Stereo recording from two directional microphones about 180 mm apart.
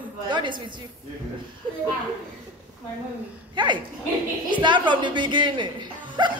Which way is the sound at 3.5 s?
25° right (ahead or behind).